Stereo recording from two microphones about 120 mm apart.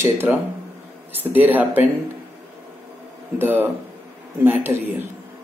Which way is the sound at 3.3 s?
15° right (ahead or behind).